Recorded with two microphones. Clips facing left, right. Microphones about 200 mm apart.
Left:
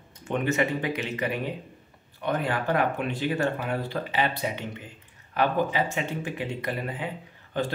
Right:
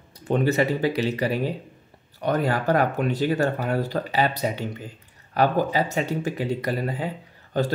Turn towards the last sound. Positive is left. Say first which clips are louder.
# right 4 dB
turn(degrees=-40)  # may be behind; listen again after turning